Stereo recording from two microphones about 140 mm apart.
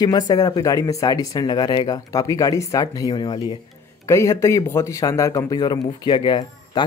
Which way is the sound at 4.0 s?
20° left (ahead or behind).